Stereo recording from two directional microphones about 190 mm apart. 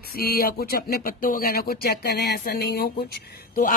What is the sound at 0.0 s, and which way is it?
A woman's voice, 55° left (ahead or behind).